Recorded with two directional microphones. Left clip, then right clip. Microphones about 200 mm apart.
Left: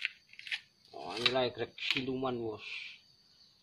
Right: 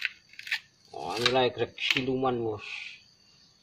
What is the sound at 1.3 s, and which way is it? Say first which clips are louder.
Filing: right 6 dB; 20° left (ahead or behind).